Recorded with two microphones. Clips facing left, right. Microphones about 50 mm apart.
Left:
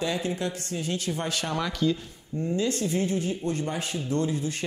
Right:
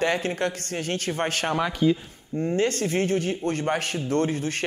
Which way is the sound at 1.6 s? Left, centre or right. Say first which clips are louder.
Right 4 dB; right.